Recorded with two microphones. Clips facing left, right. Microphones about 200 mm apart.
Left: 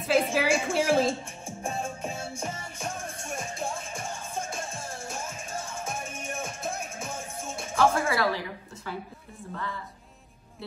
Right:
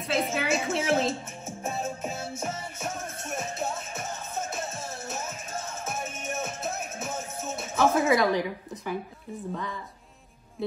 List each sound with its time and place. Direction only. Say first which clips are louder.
0.0 s speech: left 4 dB; centre (ahead or behind)
2.4 s music: right 2 dB; 5° right (ahead or behind)
5.9 s music: right 2 dB; 5° right (ahead or behind)
7.7 s a woman's voice: right 2 dB; 20° right (ahead or behind)